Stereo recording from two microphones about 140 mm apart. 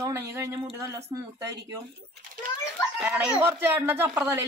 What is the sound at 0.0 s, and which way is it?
Speech, 20° right (ahead or behind).